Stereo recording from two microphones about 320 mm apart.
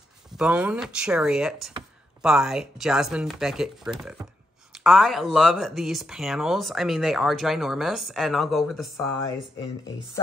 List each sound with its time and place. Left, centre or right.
0.4 s speech: centre
9.2 s speech: centre